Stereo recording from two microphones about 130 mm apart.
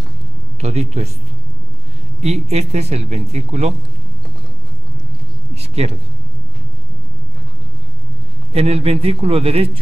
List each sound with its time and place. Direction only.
0.6 s speech: 55° right (ahead or behind)
2.2 s speech: 55° right (ahead or behind)
5.5 s a sound: 55° right (ahead or behind)
8.5 s a man's voice: 50° right (ahead or behind)